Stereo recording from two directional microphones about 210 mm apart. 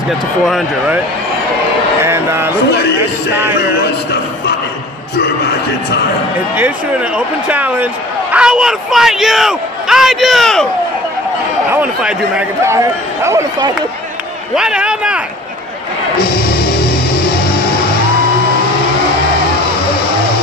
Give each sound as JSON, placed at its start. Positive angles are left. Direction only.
{"t": 0.5, "sound": "speech", "side_deg": 0}
{"t": 2.0, "sound": "speech", "side_deg": -10}
{"t": 3.8, "sound": "a man's voice", "side_deg": 50}
{"t": 7.2, "sound": "speech", "side_deg": -5}
{"t": 11.7, "sound": "speech", "side_deg": -5}
{"t": 14.5, "sound": "speech", "side_deg": -5}